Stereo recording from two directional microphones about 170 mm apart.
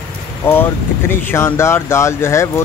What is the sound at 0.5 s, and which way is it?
Speech, 15° left (ahead or behind).